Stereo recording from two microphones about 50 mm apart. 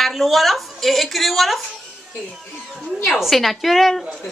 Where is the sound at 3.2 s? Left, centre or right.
Centre.